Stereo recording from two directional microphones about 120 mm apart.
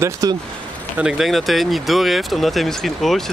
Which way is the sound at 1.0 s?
5° right (ahead or behind).